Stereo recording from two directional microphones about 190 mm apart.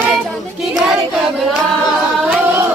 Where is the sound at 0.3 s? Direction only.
Centre (ahead or behind).